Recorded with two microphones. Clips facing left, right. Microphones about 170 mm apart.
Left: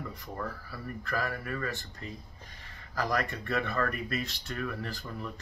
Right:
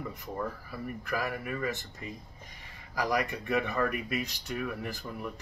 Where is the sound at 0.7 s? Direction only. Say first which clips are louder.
Right 2 dB; 15° right (ahead or behind).